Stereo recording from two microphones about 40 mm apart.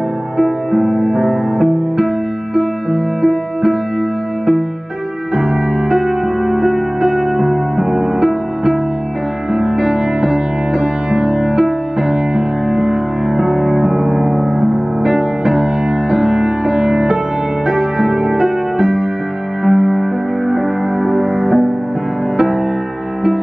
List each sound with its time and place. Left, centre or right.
0.4 s music: centre
5.3 s music: centre
9.5 s music: centre